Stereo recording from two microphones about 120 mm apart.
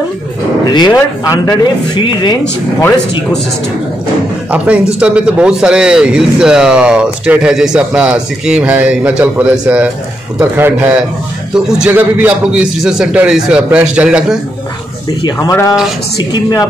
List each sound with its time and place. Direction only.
0.7 s speech: 35° left (ahead or behind)
0.9 s speech: 25° left (ahead or behind)
2.0 s speech: 40° left (ahead or behind)
4.5 s a man's voice: 10° right (ahead or behind)
16.3 s speech: 35° left (ahead or behind)